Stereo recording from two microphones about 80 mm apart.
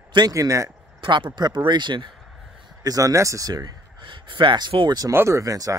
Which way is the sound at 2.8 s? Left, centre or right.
Right.